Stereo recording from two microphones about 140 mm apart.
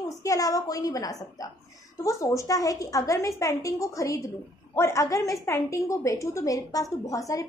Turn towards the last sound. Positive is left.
turn(degrees=25)  # may be behind; listen again after turning